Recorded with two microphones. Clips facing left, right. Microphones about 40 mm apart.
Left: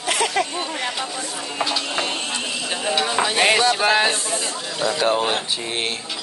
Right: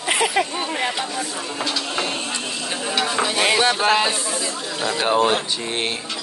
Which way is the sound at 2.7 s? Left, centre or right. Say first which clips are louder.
Left 1 dB; centre.